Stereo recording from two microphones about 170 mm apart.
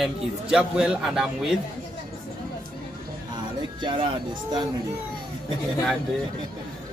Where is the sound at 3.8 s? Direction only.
30° right (ahead or behind).